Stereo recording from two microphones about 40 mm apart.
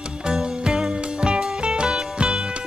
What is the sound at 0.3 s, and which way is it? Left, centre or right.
Music, right.